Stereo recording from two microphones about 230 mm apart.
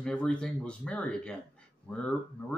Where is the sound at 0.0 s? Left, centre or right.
Centre.